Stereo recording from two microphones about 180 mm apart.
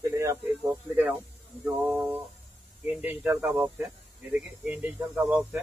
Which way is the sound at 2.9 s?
10° right (ahead or behind).